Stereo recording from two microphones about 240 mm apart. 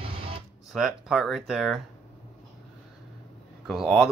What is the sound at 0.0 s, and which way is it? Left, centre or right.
Guitar, right.